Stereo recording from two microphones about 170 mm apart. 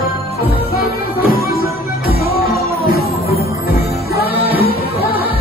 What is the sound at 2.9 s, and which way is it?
Music, 65° left (ahead or behind).